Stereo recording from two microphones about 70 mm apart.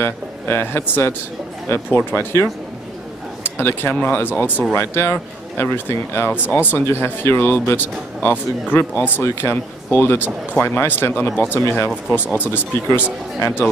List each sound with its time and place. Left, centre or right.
0.0 s a man's voice: left
3.5 s a man's voice: left